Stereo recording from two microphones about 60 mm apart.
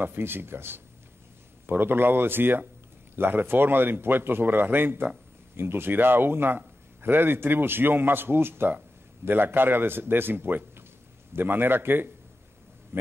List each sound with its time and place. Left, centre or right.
0.0 s speech: right